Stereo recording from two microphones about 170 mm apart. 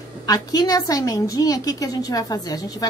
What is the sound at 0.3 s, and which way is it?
A woman's voice, 20° left (ahead or behind).